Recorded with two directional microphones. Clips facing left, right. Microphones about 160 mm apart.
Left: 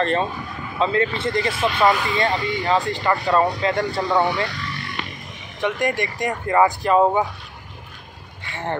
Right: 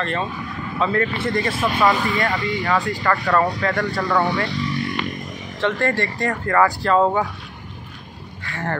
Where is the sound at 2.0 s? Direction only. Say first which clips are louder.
Even; 25° left (ahead or behind).